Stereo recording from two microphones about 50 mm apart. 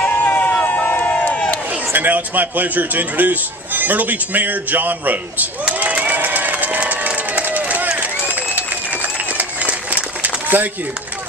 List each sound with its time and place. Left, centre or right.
0.0 s a sound: left
1.1 s crowd: left
2.0 s a man's voice: right
5.8 s run: right
8.3 s applause: right